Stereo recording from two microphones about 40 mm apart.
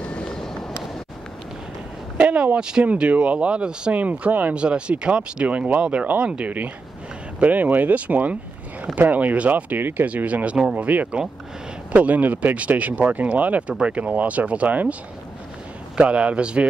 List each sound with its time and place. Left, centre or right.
0.0 s vehicle: left
0.3 s vehicle: centre
2.1 s speech: right
2.8 s speech: right
4.3 s speech: right
4.6 s speech: right
7.3 s speech: right
9.8 s speech: right
10.0 s speech: right
16.0 s speech: right